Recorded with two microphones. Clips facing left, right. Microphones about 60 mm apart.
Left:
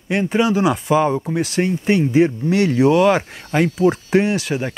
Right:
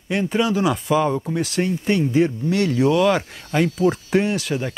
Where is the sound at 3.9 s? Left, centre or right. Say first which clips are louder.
Left 3 dB; centre.